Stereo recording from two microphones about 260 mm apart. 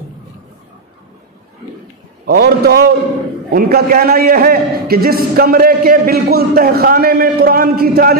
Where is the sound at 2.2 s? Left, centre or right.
Right.